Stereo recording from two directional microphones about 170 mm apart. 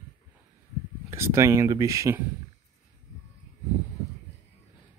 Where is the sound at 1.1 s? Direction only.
15° right (ahead or behind).